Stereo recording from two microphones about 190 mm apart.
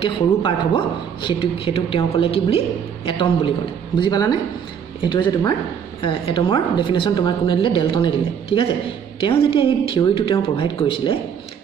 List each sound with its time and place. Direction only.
0.0 s speech: 25° left (ahead or behind)